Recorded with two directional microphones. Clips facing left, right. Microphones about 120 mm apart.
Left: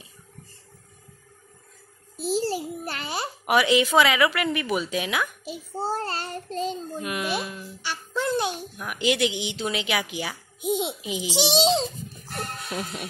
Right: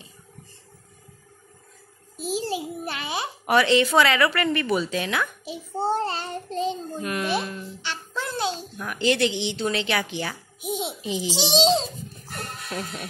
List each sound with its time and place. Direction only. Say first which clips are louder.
2.2 s a child's voice: left 2 dB; 15° right (ahead or behind)
3.4 s a child's voice: right 1 dB; 10° left (ahead or behind)